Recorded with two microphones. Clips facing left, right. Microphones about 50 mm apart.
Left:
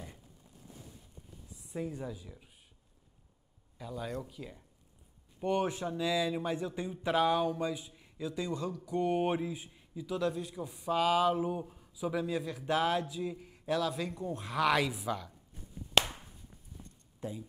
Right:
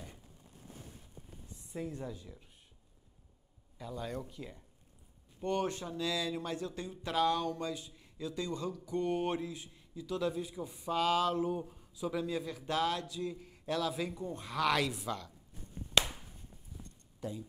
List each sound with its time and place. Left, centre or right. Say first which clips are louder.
1.5 s speech: left 2 dB; centre
3.7 s a man's voice: left 1 dB; centre
10.0 s speech: left 1 dB; centre
17.2 s speech: even; centre